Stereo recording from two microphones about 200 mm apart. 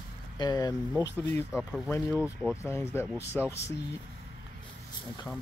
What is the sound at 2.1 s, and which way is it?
Speech, 5° right (ahead or behind).